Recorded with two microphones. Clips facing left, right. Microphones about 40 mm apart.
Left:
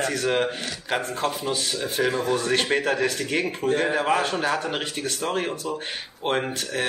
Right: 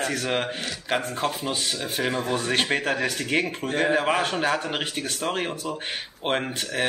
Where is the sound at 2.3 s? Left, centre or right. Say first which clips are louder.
Left 2 dB; centre.